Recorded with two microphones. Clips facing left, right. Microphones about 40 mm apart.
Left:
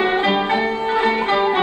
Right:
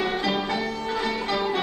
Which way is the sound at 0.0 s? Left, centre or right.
Left.